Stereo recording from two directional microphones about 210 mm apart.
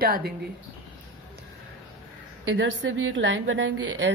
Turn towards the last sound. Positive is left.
turn(degrees=-60)  # may be behind; listen again after turning